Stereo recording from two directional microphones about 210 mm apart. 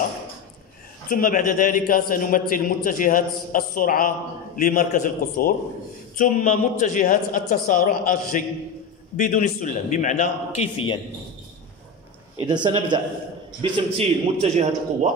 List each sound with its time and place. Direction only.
1.0 s a man's voice: 40° left (ahead or behind)
12.4 s a man's voice: 20° right (ahead or behind)